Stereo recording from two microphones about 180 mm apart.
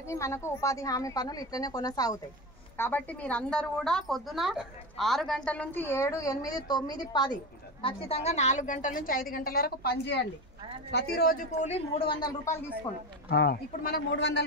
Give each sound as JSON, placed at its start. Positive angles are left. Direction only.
{"t": 0.0, "sound": "a woman's voice", "side_deg": 15}
{"t": 2.8, "sound": "a woman's voice", "side_deg": 10}
{"t": 7.8, "sound": "a woman's voice", "side_deg": 35}
{"t": 12.2, "sound": "a woman's voice", "side_deg": 20}
{"t": 13.3, "sound": "a woman's voice", "side_deg": 60}
{"t": 14.1, "sound": "a man's voice", "side_deg": 85}